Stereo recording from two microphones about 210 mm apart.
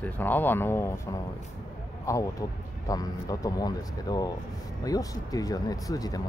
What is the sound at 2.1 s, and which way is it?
Speech, 15° left (ahead or behind).